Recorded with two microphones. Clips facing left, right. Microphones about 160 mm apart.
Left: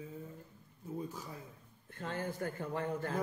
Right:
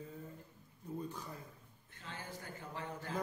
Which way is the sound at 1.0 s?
5° left (ahead or behind).